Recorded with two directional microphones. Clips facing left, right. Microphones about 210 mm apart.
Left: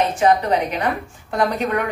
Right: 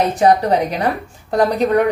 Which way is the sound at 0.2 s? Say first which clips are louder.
Right 3 dB; 40° right (ahead or behind).